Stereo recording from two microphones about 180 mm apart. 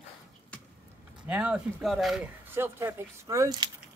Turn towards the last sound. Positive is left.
turn(degrees=-20)  # may be behind; listen again after turning